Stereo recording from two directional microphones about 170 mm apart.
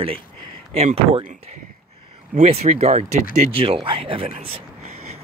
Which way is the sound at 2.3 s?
40° right (ahead or behind).